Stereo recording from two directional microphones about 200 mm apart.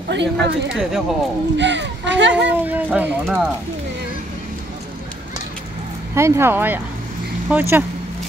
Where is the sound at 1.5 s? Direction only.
60° right (ahead or behind).